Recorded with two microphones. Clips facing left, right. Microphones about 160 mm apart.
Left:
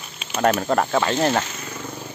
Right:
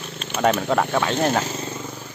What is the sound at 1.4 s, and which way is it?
Wild animals, 30° right (ahead or behind).